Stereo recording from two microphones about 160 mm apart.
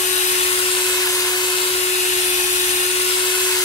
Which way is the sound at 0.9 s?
20° left (ahead or behind).